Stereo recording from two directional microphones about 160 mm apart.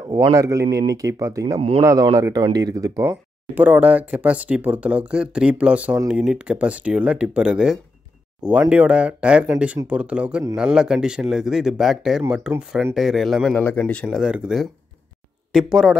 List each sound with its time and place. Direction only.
0.1 s speech: 20° right (ahead or behind); by 14.0 s 10° left (ahead or behind)
14.0 s speech: 5° right (ahead or behind)